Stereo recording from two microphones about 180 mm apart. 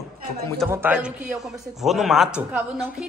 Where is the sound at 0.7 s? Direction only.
10° right (ahead or behind).